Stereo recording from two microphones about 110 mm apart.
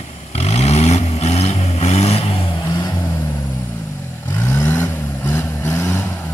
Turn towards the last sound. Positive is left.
turn(degrees=20)  # may be behind; listen again after turning